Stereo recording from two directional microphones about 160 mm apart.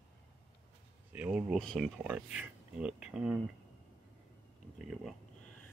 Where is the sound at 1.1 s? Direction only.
10° right (ahead or behind).